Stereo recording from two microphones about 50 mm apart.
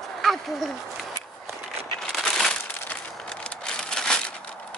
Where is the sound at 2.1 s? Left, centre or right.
Centre.